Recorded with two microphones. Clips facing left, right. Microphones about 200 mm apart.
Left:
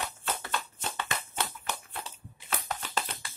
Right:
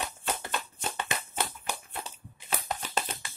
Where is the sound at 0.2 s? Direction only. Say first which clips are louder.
Right 1 dB; 15° right (ahead or behind).